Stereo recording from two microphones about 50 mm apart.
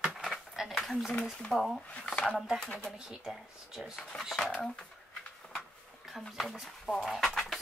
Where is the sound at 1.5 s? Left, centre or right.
Centre.